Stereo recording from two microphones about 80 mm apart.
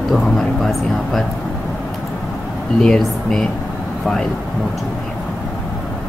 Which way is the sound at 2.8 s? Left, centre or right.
Centre.